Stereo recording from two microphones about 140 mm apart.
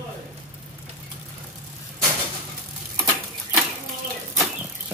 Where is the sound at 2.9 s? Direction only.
15° right (ahead or behind).